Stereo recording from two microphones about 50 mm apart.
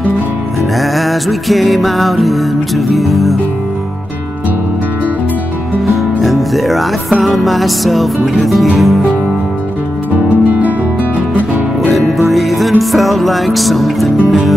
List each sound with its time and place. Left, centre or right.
0.7 s music: centre
6.2 s music: centre
10.3 s music: right
11.9 s music: centre